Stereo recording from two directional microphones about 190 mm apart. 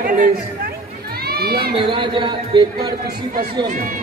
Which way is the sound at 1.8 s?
25° right (ahead or behind).